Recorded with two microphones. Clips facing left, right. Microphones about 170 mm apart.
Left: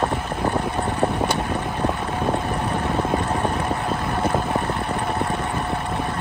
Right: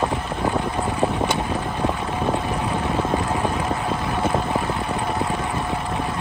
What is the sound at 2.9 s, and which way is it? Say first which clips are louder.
Vehicle: even; centre (ahead or behind).